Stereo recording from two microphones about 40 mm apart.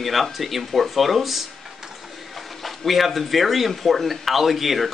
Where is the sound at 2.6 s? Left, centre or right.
Centre.